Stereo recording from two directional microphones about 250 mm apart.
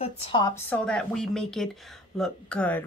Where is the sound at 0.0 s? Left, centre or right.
Left.